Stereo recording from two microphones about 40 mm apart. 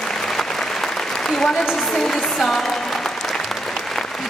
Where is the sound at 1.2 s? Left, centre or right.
Centre.